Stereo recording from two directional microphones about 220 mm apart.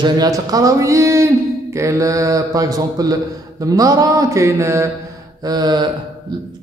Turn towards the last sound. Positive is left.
turn(degrees=-20)  # may be behind; listen again after turning